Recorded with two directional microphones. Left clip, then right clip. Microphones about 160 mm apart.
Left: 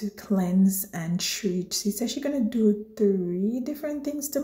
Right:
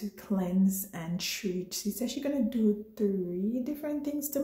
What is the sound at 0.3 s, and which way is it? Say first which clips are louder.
A woman's voice: left 5 dB; 20° left (ahead or behind).